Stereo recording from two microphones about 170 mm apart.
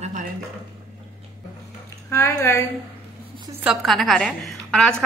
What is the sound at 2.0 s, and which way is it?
Speech, 15° left (ahead or behind).